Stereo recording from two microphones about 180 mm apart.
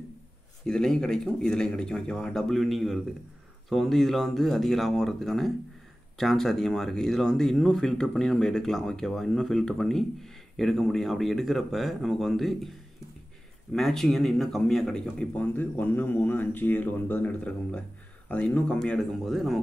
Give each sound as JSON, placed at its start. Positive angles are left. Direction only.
{"t": 0.7, "sound": "speech", "side_deg": 5}
{"t": 13.7, "sound": "speech", "side_deg": 0}